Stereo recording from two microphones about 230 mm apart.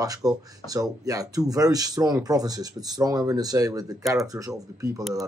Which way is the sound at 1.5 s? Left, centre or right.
Centre.